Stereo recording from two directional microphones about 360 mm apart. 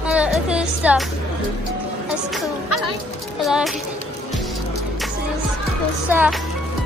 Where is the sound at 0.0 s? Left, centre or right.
Centre.